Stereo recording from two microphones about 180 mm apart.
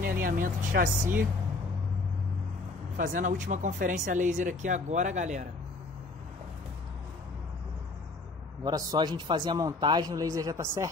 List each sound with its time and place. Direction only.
0.0 s speech: 50° right (ahead or behind)
3.0 s speech: 45° right (ahead or behind)
8.6 s a man's voice: 25° right (ahead or behind)